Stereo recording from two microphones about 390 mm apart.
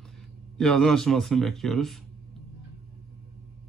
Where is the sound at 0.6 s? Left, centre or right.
Centre.